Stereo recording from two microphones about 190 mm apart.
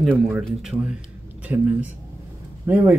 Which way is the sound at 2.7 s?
10° right (ahead or behind).